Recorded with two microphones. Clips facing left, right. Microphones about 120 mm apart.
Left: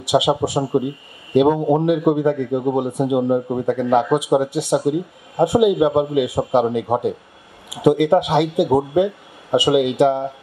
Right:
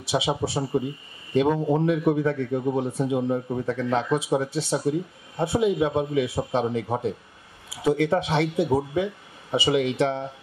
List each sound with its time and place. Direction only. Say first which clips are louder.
0.0 s speech: left 8 dB; 15° left (ahead or behind)